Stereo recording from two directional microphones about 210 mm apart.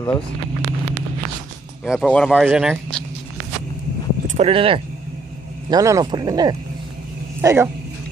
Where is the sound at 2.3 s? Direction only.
10° right (ahead or behind).